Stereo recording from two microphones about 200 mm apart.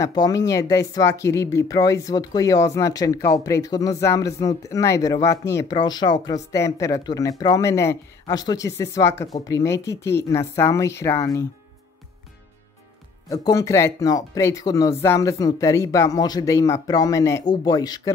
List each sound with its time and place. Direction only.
0.0 s speech: 20° left (ahead or behind)
13.3 s speech: 20° left (ahead or behind)